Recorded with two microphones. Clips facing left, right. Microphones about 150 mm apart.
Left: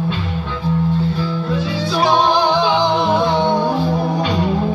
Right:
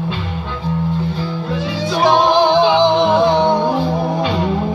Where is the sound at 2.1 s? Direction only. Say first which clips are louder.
Right 3 dB; 60° right (ahead or behind).